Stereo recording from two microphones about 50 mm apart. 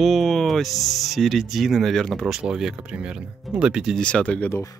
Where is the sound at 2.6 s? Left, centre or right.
Centre.